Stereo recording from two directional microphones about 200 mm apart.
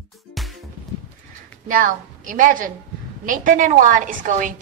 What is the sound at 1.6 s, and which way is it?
A woman's voice, 40° right (ahead or behind).